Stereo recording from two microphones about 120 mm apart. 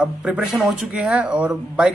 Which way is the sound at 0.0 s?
10° right (ahead or behind).